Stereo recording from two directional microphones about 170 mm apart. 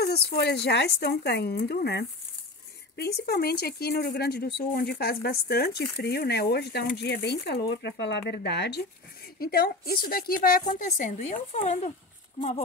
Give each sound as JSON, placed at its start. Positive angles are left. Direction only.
{"t": 0.0, "sound": "speech", "side_deg": 70}
{"t": 9.4, "sound": "a woman's voice", "side_deg": 60}